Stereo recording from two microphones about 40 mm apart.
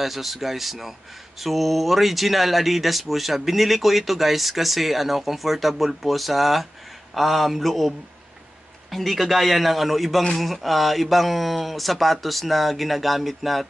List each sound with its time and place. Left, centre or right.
0.0 s speech: centre
8.9 s speech: centre